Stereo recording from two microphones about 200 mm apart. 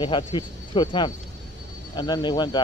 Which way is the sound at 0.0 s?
25° left (ahead or behind).